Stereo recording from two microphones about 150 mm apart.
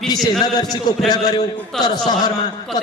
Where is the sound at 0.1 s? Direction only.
25° left (ahead or behind).